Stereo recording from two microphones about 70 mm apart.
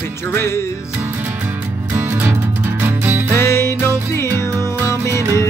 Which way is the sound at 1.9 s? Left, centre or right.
Right.